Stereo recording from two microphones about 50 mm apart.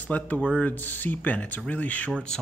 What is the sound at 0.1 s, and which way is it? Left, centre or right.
Speech, left.